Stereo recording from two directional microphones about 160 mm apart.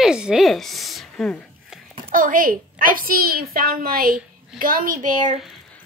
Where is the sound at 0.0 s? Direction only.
5° right (ahead or behind).